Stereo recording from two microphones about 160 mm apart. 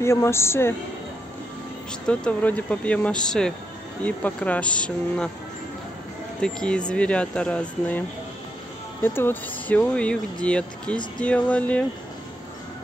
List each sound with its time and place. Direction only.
0.0 s speech: 15° left (ahead or behind)
2.0 s speech: 10° left (ahead or behind)
6.4 s speech: 5° left (ahead or behind)
9.0 s speech: 15° left (ahead or behind)